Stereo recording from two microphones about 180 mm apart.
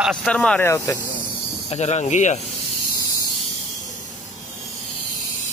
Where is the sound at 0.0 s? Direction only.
Centre (ahead or behind).